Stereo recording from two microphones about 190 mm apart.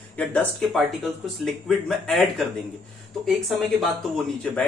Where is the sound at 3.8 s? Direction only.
Centre (ahead or behind).